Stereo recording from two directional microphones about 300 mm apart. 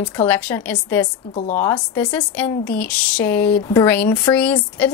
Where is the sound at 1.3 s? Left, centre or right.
Left.